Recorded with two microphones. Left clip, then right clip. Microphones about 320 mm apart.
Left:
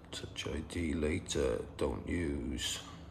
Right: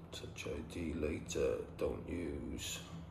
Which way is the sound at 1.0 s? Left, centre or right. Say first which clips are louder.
Left 2 dB; left.